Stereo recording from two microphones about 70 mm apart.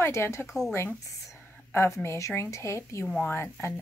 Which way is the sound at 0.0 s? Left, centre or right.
Left.